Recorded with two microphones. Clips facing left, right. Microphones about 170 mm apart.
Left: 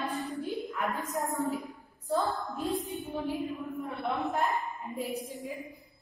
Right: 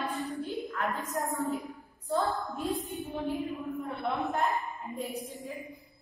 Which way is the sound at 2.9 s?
Centre (ahead or behind).